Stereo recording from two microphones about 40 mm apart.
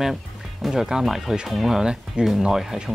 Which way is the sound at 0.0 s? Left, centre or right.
Centre.